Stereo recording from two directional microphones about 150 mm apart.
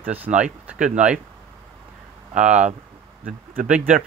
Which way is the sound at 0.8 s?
55° right (ahead or behind).